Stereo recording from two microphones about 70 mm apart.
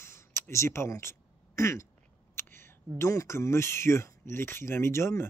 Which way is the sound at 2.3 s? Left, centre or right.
Left.